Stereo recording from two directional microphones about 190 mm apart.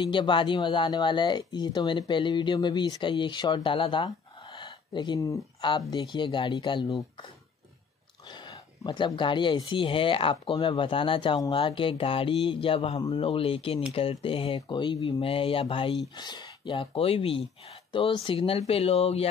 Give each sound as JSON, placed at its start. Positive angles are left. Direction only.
{"t": 0.0, "sound": "speech", "side_deg": 25}
{"t": 8.3, "sound": "speech", "side_deg": 25}